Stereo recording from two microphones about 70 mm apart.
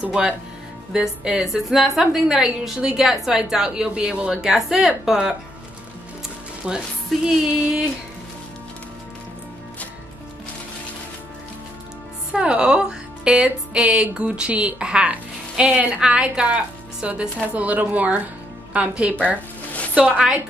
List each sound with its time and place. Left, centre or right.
0.0 s speech: centre
6.6 s speech: centre
12.3 s a woman's voice: centre
19.7 s music: centre